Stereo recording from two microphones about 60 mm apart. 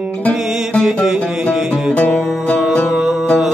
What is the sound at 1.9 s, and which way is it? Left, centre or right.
Music, centre.